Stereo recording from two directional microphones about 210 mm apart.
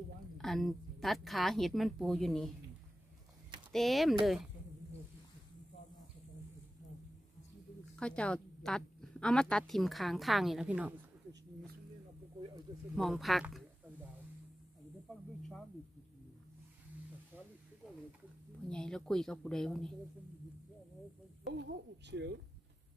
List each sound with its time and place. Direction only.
0.4 s a woman's voice: centre (ahead or behind)
3.7 s a woman's voice: centre (ahead or behind)
8.0 s a woman's voice: 5° left (ahead or behind)
12.9 s a woman's voice: centre (ahead or behind)
17.8 s a sound: centre (ahead or behind)
18.7 s a woman's voice: 5° left (ahead or behind)
21.5 s speech: 55° right (ahead or behind)